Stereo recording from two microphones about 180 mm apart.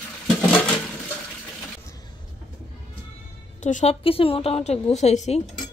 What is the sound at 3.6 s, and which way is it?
Speech, 45° left (ahead or behind).